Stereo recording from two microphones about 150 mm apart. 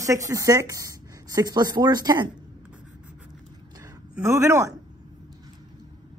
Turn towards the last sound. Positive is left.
turn(degrees=-20)  # may be behind; listen again after turning